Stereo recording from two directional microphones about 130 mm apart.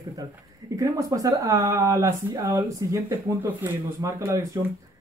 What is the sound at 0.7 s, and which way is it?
Speech, 25° right (ahead or behind).